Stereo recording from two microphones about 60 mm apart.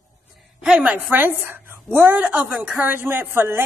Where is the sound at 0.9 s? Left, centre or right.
Right.